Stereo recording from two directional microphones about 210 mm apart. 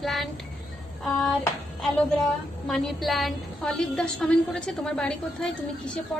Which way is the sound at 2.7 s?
Centre (ahead or behind).